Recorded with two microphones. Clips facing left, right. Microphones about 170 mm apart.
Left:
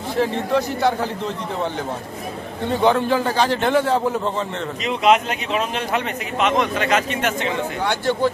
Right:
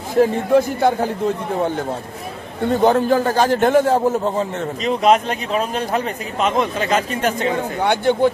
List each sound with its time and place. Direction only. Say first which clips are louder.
0.1 s a man's voice: right 6 dB; 50° right (ahead or behind)
2.7 s a man's voice: right 3 dB; 45° right (ahead or behind)
7.8 s speech: right 5 dB; 55° right (ahead or behind)